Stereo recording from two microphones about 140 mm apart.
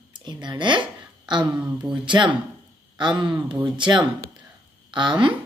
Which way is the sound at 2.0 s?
35° right (ahead or behind).